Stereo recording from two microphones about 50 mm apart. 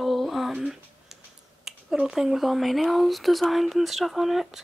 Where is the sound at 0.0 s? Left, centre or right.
Centre.